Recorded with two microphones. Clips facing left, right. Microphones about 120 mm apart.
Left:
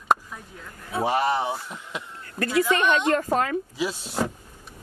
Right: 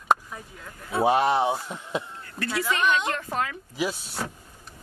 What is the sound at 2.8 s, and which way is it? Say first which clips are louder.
Speech: left 4 dB; 40° left (ahead or behind).